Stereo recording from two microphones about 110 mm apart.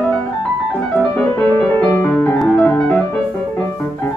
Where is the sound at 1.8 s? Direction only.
15° left (ahead or behind).